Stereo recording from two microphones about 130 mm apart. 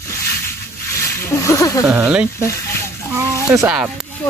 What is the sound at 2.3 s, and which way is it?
Speech, 20° left (ahead or behind).